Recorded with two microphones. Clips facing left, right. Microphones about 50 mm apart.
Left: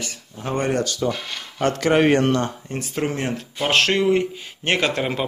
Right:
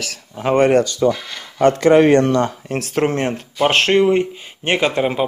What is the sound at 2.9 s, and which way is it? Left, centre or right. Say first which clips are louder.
Speech: right 6 dB; right.